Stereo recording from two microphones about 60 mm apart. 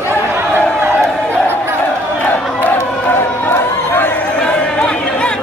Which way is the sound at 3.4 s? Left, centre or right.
Left.